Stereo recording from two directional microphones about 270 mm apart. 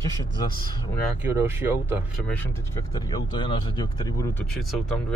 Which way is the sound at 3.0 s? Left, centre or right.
Centre.